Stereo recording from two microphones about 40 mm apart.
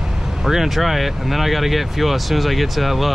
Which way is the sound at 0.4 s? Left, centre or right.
Centre.